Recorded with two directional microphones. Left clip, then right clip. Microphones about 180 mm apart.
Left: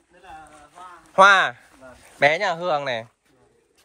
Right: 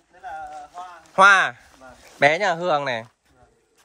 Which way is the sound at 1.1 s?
10° right (ahead or behind).